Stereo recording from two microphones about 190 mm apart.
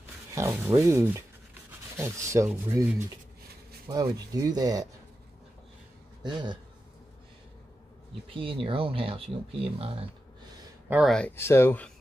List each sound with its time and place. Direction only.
0.3 s speech: 15° right (ahead or behind)
6.2 s speech: 25° right (ahead or behind)
8.3 s speech: 30° right (ahead or behind)
10.9 s speech: centre (ahead or behind)